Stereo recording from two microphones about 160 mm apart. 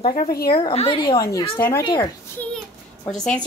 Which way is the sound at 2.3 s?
10° left (ahead or behind).